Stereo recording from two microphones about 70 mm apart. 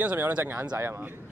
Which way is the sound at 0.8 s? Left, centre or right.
Right.